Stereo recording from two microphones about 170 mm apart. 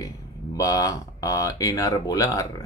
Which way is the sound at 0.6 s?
20° left (ahead or behind).